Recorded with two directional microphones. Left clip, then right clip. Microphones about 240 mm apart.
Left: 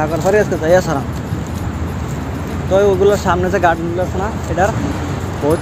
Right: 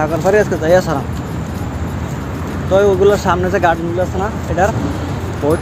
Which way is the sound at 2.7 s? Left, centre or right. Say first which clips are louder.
Right 1 dB; centre.